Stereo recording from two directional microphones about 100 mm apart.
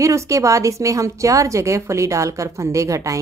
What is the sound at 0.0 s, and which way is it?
A woman's voice, 30° right (ahead or behind).